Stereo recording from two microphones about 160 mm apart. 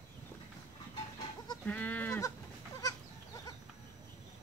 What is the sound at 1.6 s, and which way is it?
Livestock, 10° left (ahead or behind).